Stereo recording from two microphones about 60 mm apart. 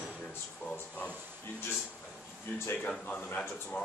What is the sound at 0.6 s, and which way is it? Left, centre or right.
Speech, left.